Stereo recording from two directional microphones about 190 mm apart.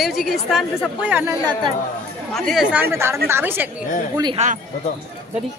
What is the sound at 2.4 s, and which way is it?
Speech, centre (ahead or behind).